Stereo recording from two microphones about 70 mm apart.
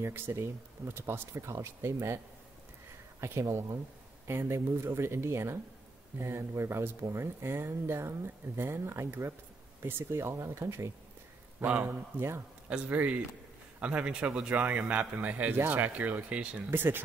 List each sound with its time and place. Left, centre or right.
0.0 s speech: right
3.2 s speech: right
12.6 s a man's voice: centre
16.7 s speech: right